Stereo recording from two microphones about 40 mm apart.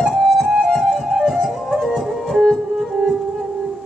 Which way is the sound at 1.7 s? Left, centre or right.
Centre.